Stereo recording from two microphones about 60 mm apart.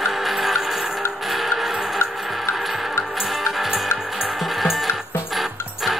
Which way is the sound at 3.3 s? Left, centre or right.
Centre.